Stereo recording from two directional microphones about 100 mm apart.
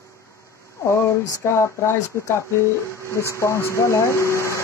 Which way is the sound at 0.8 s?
30° left (ahead or behind).